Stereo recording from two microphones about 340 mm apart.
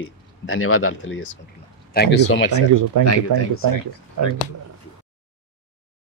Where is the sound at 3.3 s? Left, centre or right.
Right.